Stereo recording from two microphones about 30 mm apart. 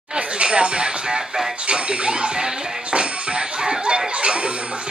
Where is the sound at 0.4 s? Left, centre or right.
Right.